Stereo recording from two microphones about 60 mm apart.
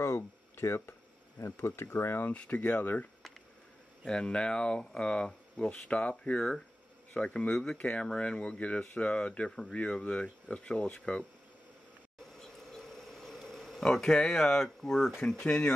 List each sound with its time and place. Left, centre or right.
0.0 s a sound: left
1.4 s speech: left
2.3 s speech: left
4.0 s speech: centre
7.7 s speech: left
12.4 s mouse: centre
15.1 s speech: centre